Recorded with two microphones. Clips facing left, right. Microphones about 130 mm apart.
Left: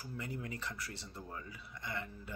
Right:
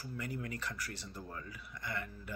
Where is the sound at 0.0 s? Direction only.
25° left (ahead or behind).